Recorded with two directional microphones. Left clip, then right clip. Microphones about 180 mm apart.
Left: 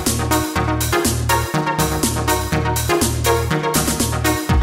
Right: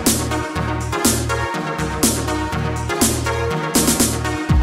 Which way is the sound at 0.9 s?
Centre (ahead or behind).